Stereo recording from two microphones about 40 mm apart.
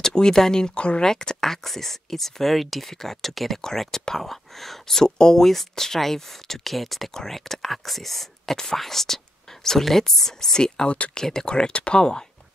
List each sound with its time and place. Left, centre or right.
0.0 s speech: centre
0.7 s speech: left
1.0 s speech: centre